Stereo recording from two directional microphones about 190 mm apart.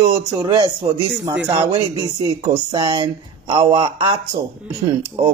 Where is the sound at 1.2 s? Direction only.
5° right (ahead or behind).